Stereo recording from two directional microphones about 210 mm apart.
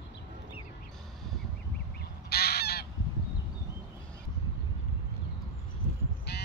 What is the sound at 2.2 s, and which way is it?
Goose, 50° left (ahead or behind).